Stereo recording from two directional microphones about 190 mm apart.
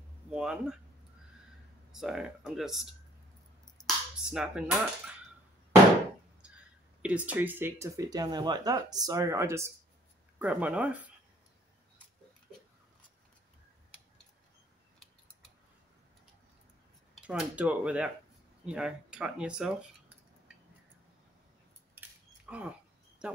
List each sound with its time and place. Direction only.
0.3 s speech: 5° right (ahead or behind)
1.9 s speech: centre (ahead or behind)
6.4 s a sound: 5° right (ahead or behind)
7.0 s speech: 5° right (ahead or behind)
17.3 s speech: 5° right (ahead or behind)
22.5 s speech: 5° right (ahead or behind)